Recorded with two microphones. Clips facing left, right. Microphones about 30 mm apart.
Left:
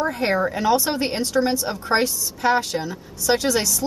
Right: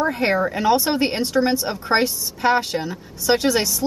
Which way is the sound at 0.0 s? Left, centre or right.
Centre.